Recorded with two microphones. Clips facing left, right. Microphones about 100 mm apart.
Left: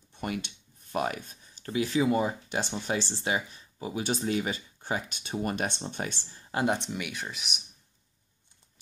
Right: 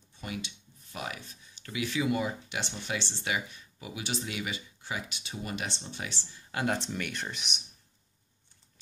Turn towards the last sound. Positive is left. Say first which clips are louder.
# even
turn(degrees=5)  # may be behind; listen again after turning